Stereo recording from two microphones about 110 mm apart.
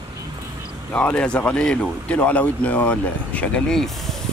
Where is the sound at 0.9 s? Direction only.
10° left (ahead or behind).